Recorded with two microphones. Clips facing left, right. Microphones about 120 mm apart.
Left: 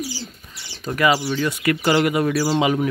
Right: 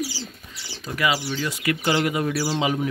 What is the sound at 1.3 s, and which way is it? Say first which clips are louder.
Speech: left 5 dB; 55° left (ahead or behind).